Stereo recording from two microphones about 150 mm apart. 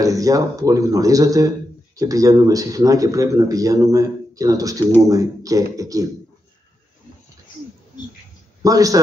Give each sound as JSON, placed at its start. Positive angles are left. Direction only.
{"t": 0.0, "sound": "speech", "side_deg": -25}
{"t": 8.6, "sound": "speech", "side_deg": -25}